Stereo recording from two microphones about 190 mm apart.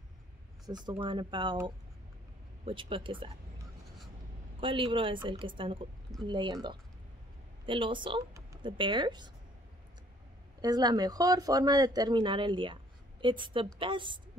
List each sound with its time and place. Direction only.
0.7 s speech: 20° right (ahead or behind)
2.6 s speech: 25° right (ahead or behind)
4.6 s speech: 25° right (ahead or behind)
7.6 s speech: 25° right (ahead or behind)
10.6 s speech: 20° right (ahead or behind)